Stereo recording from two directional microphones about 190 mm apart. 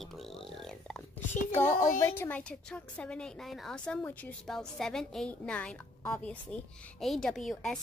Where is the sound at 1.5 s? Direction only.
15° left (ahead or behind).